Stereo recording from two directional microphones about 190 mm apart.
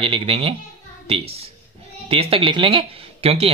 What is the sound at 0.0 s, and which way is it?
Speech, 30° right (ahead or behind).